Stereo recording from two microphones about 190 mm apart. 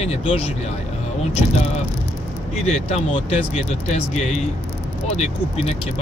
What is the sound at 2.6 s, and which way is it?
Speech, 35° left (ahead or behind).